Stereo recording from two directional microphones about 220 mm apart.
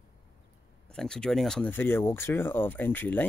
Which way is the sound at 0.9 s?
5° left (ahead or behind).